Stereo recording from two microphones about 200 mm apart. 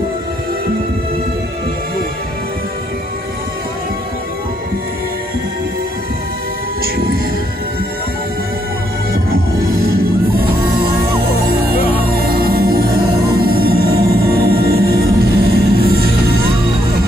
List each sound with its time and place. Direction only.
9.1 s music: 50° right (ahead or behind)
11.6 s music: 50° right (ahead or behind)